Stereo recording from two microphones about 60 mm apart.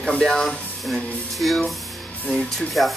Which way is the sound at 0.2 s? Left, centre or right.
Centre.